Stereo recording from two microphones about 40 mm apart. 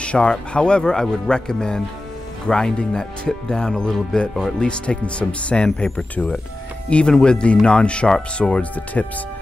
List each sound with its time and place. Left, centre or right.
0.0 s speech: left
6.9 s speech: left